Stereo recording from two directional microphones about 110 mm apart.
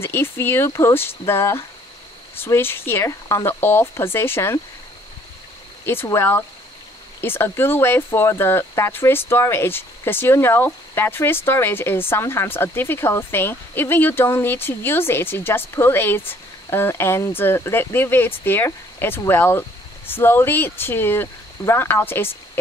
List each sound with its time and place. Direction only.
0.0 s speech: 20° left (ahead or behind)
6.0 s speech: 25° left (ahead or behind)